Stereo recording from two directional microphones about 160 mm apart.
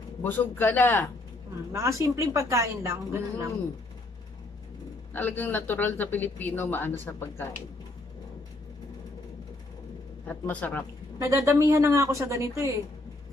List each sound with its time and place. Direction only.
0.2 s speech: 10° left (ahead or behind)
1.7 s speech: 20° right (ahead or behind)
5.1 s speech: 10° left (ahead or behind)
10.2 s speech: 10° left (ahead or behind)
11.1 s a woman's voice: 20° right (ahead or behind)